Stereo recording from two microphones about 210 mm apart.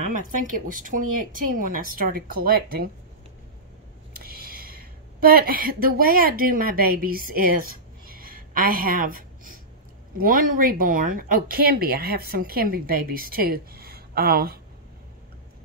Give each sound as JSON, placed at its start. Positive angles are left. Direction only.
{"t": 0.0, "sound": "speech", "side_deg": -40}
{"t": 4.2, "sound": "a sound", "side_deg": -45}
{"t": 5.2, "sound": "speech", "side_deg": -45}